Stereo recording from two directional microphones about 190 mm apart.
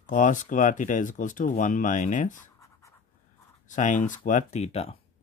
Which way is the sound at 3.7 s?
40° left (ahead or behind).